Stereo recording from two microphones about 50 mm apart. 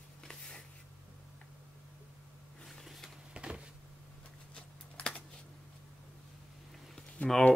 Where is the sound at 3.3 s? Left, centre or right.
Centre.